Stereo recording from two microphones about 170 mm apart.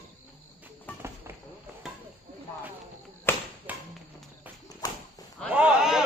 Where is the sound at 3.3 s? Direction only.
10° left (ahead or behind).